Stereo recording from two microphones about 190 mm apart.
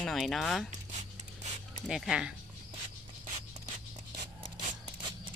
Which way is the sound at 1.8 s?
Centre (ahead or behind).